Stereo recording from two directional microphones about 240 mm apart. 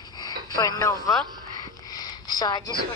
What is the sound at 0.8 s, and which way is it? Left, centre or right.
Speech, centre.